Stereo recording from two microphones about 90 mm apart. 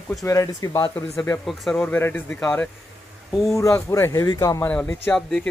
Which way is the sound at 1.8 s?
20° left (ahead or behind).